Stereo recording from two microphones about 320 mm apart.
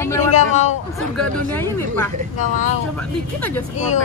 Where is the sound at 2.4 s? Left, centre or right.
Left.